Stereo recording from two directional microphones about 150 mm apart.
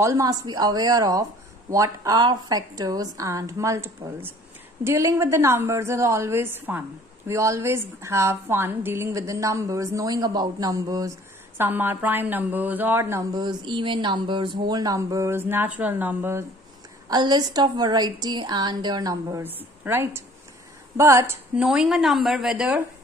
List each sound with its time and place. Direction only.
0.0 s a woman's voice: 20° right (ahead or behind)
17.1 s a woman's voice: 30° right (ahead or behind)
19.4 s a woman's voice: 15° right (ahead or behind)
21.6 s a woman's voice: centre (ahead or behind)